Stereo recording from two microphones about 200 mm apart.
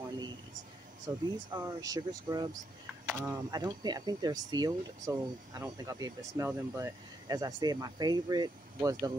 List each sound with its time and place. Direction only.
1.0 s speech: 15° right (ahead or behind)